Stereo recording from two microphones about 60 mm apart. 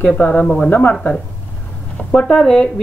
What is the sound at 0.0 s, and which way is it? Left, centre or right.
Speech, left.